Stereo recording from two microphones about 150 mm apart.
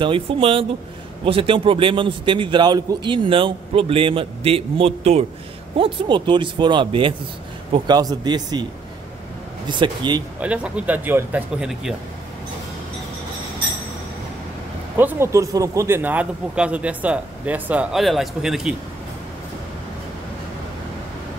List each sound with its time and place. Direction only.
0.0 s a man's voice: 35° right (ahead or behind)
9.7 s a man's voice: 30° right (ahead or behind)
10.4 s a man's voice: 10° right (ahead or behind)
15.0 s a man's voice: 15° right (ahead or behind)